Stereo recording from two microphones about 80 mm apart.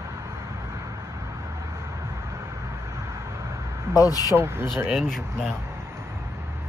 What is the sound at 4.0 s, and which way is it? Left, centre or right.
Speech, left.